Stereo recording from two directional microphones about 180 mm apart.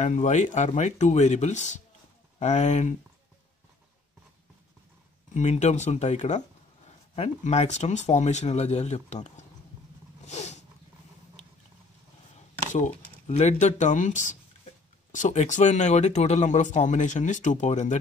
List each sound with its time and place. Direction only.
0.0 s speech: 40° left (ahead or behind)
5.3 s speech: 40° left (ahead or behind)
10.2 s a sound: 40° left (ahead or behind)
12.7 s speech: 40° left (ahead or behind)